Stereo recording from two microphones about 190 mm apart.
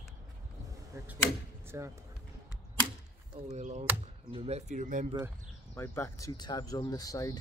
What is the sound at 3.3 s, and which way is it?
Speech, 35° right (ahead or behind).